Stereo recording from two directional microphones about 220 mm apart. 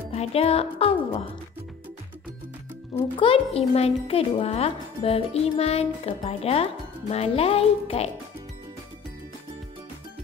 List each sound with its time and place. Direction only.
0.1 s speech: 30° left (ahead or behind)
3.2 s speech: 25° left (ahead or behind)